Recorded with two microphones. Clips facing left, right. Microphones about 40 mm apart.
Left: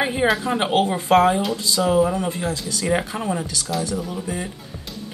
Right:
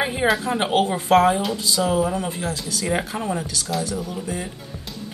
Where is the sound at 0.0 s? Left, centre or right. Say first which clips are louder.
Left 1 dB; centre.